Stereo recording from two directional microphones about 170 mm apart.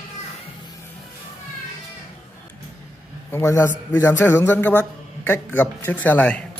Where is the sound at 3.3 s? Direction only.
15° left (ahead or behind).